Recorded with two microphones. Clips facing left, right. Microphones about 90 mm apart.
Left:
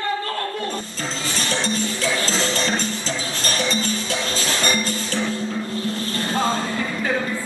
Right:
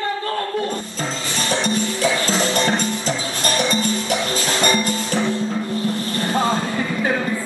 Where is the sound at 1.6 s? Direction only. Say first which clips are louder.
Right 3 dB; 15° right (ahead or behind).